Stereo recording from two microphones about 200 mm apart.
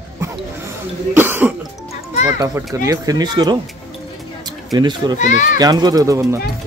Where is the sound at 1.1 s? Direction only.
10° right (ahead or behind).